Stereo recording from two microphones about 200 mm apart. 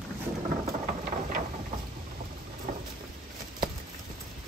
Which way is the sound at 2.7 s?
40° right (ahead or behind).